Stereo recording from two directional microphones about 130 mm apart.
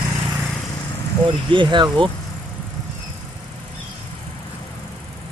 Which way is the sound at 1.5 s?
35° right (ahead or behind).